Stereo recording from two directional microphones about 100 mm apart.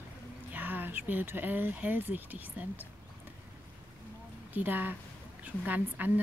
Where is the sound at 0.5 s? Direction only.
15° right (ahead or behind).